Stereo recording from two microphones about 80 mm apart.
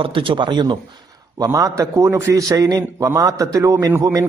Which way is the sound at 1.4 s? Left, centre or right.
Right.